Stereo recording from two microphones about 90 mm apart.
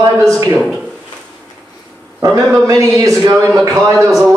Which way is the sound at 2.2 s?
35° right (ahead or behind).